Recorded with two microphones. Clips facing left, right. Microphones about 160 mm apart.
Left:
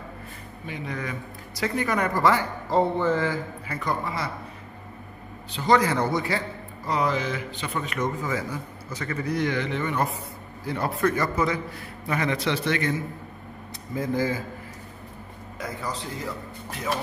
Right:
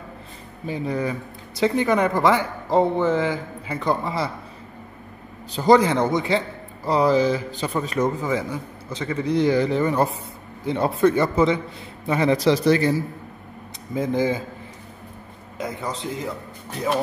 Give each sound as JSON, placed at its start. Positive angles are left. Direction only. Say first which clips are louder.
{"t": 0.7, "sound": "speech", "louder": "right 8 dB", "side_deg": -35}
{"t": 5.5, "sound": "a man's voice", "louder": "right 6 dB", "side_deg": -40}
{"t": 5.8, "sound": "a man's voice", "louder": "right 4 dB", "side_deg": -20}
{"t": 8.3, "sound": "speech", "louder": "right 5 dB", "side_deg": -25}
{"t": 10.6, "sound": "a man's voice", "louder": "right 6 dB", "side_deg": -25}
{"t": 13.9, "sound": "speech", "louder": "right 4 dB", "side_deg": -20}
{"t": 15.5, "sound": "speech", "louder": "right 4 dB", "side_deg": -25}